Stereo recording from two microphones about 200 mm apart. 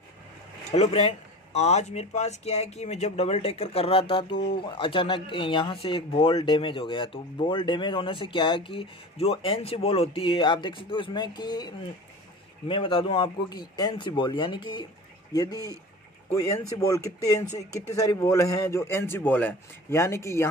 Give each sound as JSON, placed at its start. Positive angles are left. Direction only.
{"t": 0.7, "sound": "a man's voice", "side_deg": 30}